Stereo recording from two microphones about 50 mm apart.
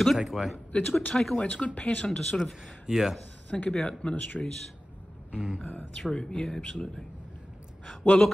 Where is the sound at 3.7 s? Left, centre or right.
Centre.